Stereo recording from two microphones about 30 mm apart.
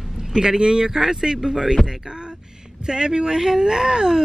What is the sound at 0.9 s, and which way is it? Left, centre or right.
Speech, centre.